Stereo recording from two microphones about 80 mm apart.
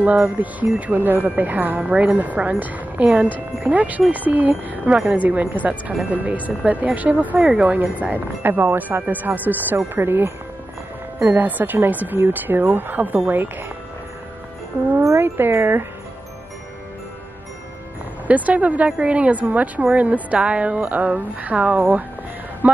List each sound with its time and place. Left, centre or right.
0.4 s speech: right
11.3 s speech: right
15.0 s speech: right
18.2 s a woman's voice: centre